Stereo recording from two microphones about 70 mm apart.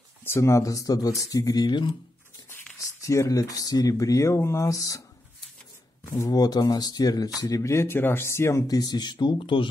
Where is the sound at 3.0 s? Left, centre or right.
Left.